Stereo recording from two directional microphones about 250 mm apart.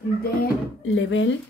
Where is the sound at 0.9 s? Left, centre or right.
Left.